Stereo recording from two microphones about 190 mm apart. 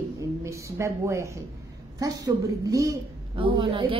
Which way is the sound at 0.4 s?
15° right (ahead or behind).